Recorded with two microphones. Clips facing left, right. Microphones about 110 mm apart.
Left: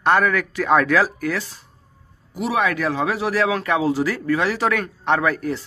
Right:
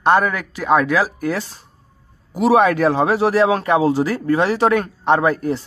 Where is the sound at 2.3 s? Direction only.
40° right (ahead or behind); by 5.6 s 25° right (ahead or behind).